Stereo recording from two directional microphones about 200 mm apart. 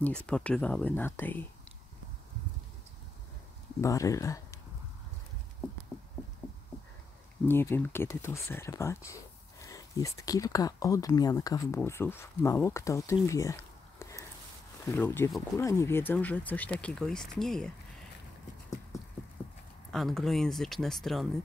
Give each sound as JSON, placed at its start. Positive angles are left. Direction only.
{"t": 0.3, "sound": "speech", "side_deg": 5}
{"t": 3.8, "sound": "speech", "side_deg": 15}
{"t": 6.4, "sound": "a sound", "side_deg": -10}
{"t": 7.4, "sound": "speech", "side_deg": 10}
{"t": 18.9, "sound": "a sound", "side_deg": 15}
{"t": 19.9, "sound": "speech", "side_deg": 0}